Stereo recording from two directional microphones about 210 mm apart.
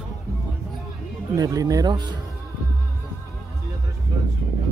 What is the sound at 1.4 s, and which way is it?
Speech, 15° right (ahead or behind).